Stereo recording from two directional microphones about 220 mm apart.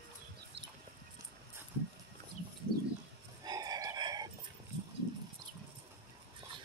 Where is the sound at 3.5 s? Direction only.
15° right (ahead or behind).